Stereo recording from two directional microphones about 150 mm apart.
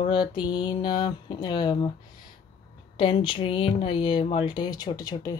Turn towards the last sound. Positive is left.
turn(degrees=25)  # may be behind; listen again after turning